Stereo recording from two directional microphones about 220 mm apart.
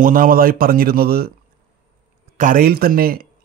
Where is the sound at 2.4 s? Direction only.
40° right (ahead or behind).